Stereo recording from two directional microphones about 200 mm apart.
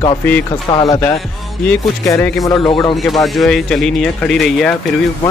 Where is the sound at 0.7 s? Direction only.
20° left (ahead or behind).